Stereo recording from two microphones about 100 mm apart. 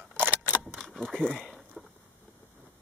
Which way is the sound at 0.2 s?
20° right (ahead or behind).